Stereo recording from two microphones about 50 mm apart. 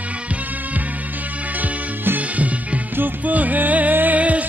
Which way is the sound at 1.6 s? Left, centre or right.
Right.